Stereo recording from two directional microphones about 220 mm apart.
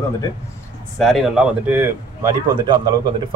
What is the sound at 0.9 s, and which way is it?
Speech, centre (ahead or behind).